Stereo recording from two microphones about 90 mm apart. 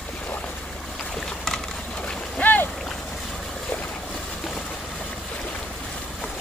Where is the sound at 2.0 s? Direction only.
15° left (ahead or behind).